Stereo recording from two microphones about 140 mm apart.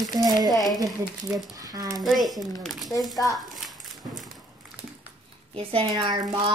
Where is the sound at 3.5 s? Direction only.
Centre (ahead or behind).